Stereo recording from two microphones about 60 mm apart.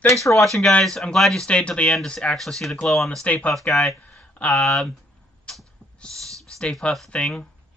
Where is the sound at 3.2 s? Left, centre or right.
Left.